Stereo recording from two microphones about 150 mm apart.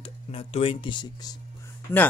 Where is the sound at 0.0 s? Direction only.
40° left (ahead or behind).